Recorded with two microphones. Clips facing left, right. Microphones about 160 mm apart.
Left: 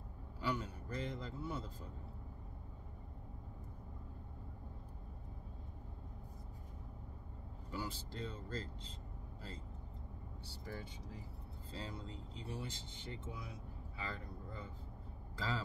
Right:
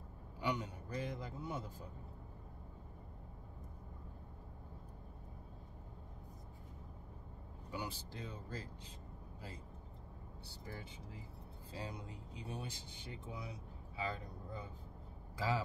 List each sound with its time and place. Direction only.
0.4 s a man's voice: 20° right (ahead or behind)
7.7 s speech: 15° right (ahead or behind)
11.7 s speech: 15° right (ahead or behind)